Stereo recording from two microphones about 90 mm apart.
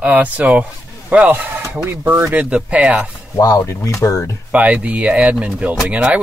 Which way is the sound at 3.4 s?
45° left (ahead or behind).